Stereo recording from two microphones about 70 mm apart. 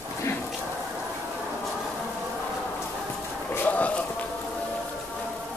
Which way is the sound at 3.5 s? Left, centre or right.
Left.